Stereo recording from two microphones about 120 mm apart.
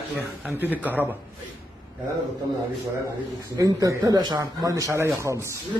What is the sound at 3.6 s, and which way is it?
A man's voice, 30° right (ahead or behind).